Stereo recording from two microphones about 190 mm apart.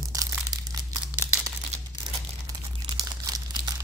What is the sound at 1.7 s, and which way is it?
Crumpling, 35° right (ahead or behind).